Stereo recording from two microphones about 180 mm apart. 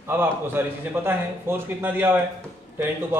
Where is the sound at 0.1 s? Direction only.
15° right (ahead or behind).